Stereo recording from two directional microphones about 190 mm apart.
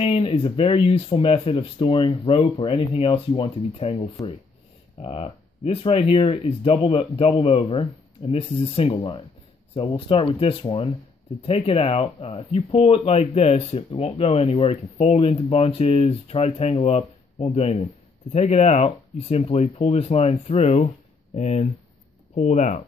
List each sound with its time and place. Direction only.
0.0 s speech: 30° left (ahead or behind)
5.0 s speech: 35° left (ahead or behind)